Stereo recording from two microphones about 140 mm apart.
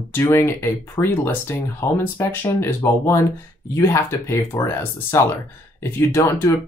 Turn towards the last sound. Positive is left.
turn(degrees=20)  # may be behind; listen again after turning